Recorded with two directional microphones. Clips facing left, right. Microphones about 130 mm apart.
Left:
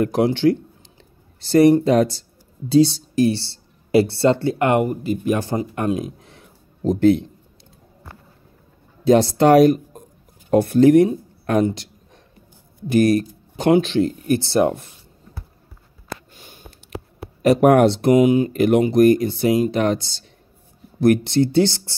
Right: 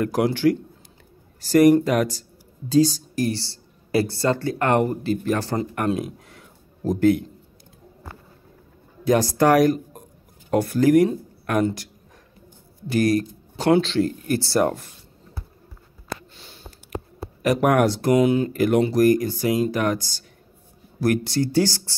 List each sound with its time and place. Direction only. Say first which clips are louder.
0.0 s speech: left 3 dB; 25° left (ahead or behind)
9.0 s speech: left 4 dB; 25° left (ahead or behind)
16.3 s a sound: left 1 dB; 50° left (ahead or behind)
17.4 s speech: left 5 dB; 30° left (ahead or behind)